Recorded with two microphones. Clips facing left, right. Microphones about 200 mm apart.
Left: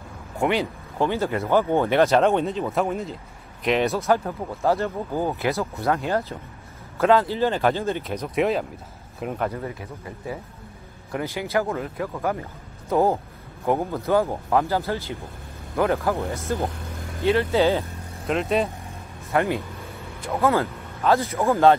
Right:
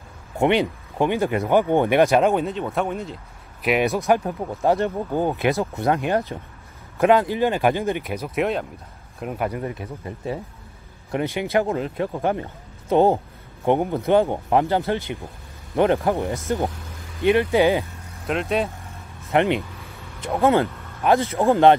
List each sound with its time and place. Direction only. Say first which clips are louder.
0.4 s speech: right 4 dB; 20° right (ahead or behind)
2.2 s speech: even; centre (ahead or behind)
3.6 s speech: right 1 dB; 10° right (ahead or behind)
8.4 s a man's voice: left 1 dB; centre (ahead or behind); by 17.8 s 15° right (ahead or behind)
18.2 s speech: even; centre (ahead or behind)
19.3 s a man's voice: right 3 dB; 20° right (ahead or behind)